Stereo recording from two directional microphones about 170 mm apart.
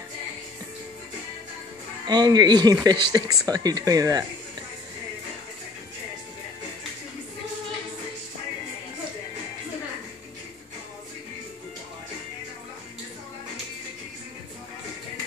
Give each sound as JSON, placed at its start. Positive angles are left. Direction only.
{"t": 2.0, "sound": "speech", "side_deg": -25}